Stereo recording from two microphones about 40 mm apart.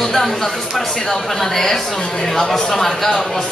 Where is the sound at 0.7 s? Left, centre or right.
Centre.